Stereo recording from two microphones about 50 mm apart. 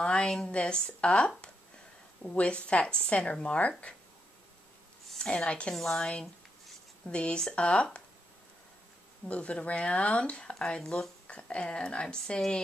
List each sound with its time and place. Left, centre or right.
0.0 s a woman's voice: centre
5.2 s speech: centre
5.8 s speech: centre
7.1 s speech: left
9.3 s speech: left